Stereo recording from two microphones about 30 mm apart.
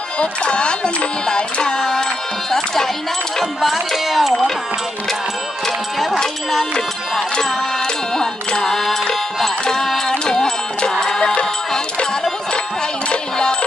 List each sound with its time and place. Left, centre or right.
0.2 s music: left
2.5 s speech: centre
3.9 s speech: centre
7.3 s music: left